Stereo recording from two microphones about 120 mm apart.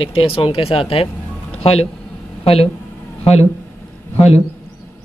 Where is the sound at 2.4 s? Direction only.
55° left (ahead or behind).